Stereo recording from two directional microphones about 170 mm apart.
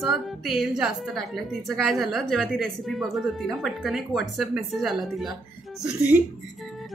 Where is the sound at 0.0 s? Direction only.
Centre (ahead or behind).